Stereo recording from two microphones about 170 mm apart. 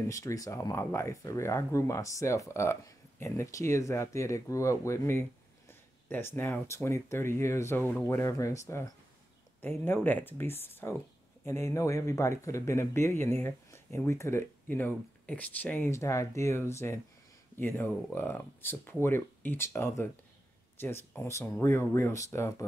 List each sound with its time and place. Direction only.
0.1 s speech: 20° left (ahead or behind)